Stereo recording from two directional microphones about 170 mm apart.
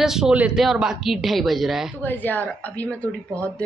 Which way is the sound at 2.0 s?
10° left (ahead or behind).